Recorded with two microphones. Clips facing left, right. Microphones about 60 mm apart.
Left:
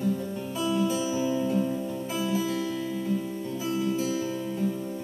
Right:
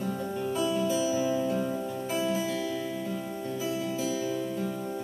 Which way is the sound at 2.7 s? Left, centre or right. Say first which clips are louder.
Left 2 dB; centre.